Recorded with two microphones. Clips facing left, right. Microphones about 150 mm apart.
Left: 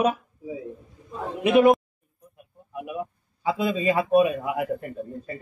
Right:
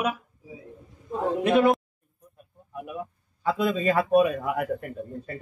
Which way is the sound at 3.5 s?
5° left (ahead or behind).